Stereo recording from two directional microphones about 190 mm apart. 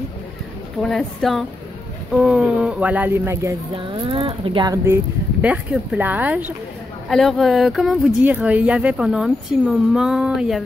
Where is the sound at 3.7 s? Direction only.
30° right (ahead or behind).